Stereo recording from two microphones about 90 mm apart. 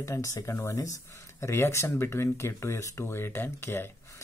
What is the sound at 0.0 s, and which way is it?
Speech, 35° left (ahead or behind).